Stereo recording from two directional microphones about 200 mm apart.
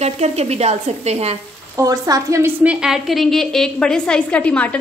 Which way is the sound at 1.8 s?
20° right (ahead or behind).